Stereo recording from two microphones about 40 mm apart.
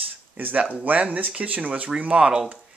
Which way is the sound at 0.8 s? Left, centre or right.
Right.